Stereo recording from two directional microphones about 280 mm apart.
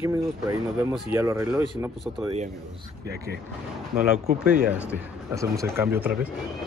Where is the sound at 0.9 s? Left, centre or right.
Centre.